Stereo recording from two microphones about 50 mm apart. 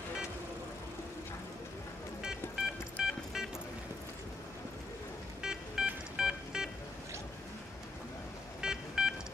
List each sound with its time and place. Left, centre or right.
2.6 s a sound: centre
5.4 s music: centre
8.5 s telephone dialing: centre